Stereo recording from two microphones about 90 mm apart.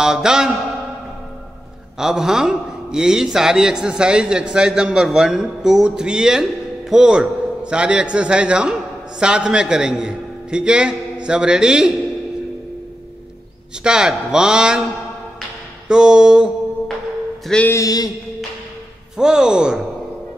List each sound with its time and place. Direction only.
0.0 s a man's voice: 5° right (ahead or behind)
2.0 s a man's voice: 5° right (ahead or behind)
13.8 s a man's voice: 10° right (ahead or behind)
15.9 s a man's voice: 10° right (ahead or behind)
17.6 s music: 40° left (ahead or behind)
19.1 s a man's voice: 10° right (ahead or behind)